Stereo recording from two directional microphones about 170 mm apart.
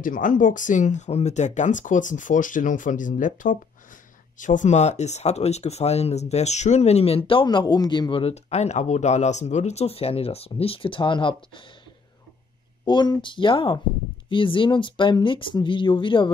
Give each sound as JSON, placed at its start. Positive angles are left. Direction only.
{"t": 0.0, "sound": "speech", "side_deg": 50}
{"t": 12.8, "sound": "speech", "side_deg": 25}